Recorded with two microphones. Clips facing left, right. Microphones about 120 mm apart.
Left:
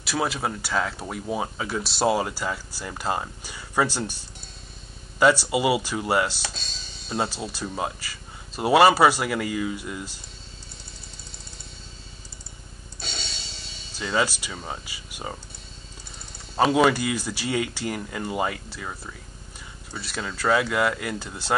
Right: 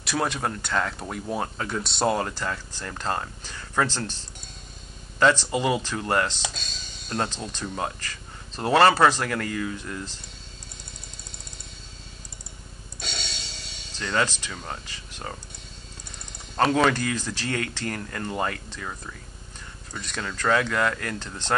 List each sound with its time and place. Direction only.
0.0 s speech: 5° left (ahead or behind)
6.5 s music: 40° left (ahead or behind)
7.1 s speech: 5° left (ahead or behind)
13.0 s music: 40° left (ahead or behind)
13.9 s speech: 10° left (ahead or behind)
16.5 s speech: 10° left (ahead or behind)